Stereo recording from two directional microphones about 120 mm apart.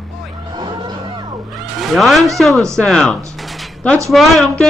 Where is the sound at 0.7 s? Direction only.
40° right (ahead or behind).